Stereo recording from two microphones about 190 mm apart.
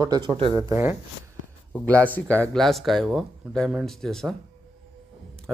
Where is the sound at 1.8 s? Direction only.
10° left (ahead or behind).